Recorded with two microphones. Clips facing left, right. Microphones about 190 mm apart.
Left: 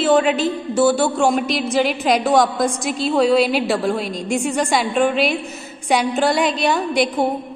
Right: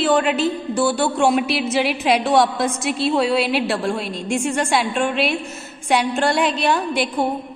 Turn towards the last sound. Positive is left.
turn(degrees=0)  # may be behind; listen again after turning